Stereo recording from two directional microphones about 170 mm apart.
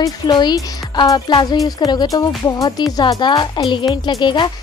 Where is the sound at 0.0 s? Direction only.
25° left (ahead or behind).